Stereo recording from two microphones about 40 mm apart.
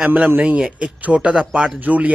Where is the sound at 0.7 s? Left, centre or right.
Right.